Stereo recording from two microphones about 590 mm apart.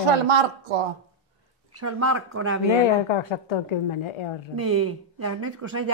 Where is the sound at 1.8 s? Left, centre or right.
Right.